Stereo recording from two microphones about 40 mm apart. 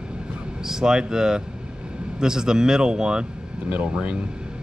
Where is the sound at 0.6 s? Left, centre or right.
Centre.